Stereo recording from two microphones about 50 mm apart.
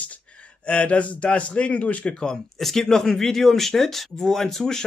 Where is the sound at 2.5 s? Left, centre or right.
Centre.